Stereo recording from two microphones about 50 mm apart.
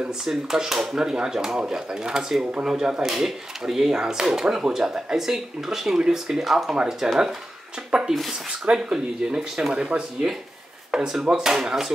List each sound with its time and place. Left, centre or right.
0.2 s speech: centre
8.6 s speech: centre
9.8 s speech: right
10.9 s speech: centre